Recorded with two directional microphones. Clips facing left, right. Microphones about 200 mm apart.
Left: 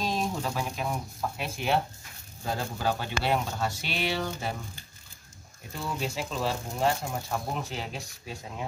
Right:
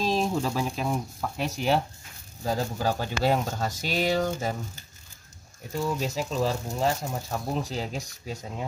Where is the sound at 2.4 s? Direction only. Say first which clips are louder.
Right 3 dB; 40° right (ahead or behind).